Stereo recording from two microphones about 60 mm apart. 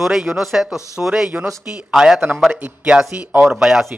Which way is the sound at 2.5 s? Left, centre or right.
Right.